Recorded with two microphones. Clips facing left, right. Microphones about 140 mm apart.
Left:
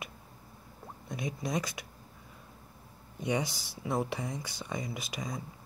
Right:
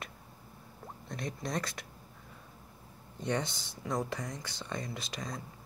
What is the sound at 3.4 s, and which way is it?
Speech, 20° right (ahead or behind).